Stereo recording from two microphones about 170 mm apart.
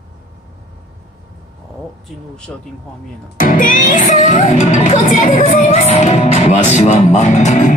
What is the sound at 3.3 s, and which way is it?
Music, 50° left (ahead or behind).